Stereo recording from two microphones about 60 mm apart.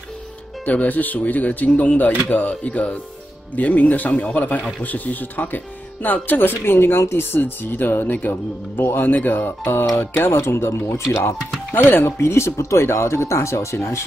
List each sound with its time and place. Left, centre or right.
0.7 s speech: left
12.2 s speech: left